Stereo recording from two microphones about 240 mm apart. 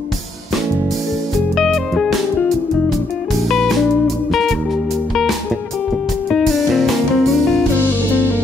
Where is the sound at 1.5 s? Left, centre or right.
Centre.